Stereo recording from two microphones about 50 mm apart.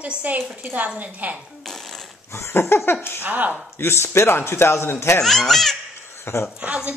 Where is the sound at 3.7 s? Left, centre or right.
Left.